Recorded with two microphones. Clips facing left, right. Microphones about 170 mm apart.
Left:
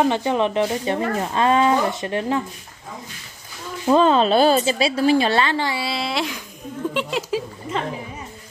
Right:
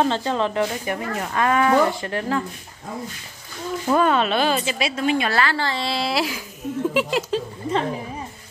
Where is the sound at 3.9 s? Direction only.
25° left (ahead or behind); by 7.4 s centre (ahead or behind).